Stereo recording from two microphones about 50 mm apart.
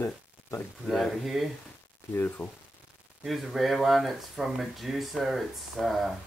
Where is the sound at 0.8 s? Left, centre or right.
Centre.